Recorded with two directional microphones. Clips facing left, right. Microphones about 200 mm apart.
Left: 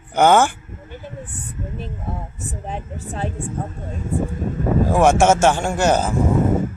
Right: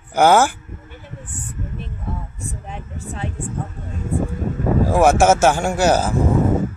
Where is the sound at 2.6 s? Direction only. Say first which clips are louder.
Left 3 dB; 35° left (ahead or behind).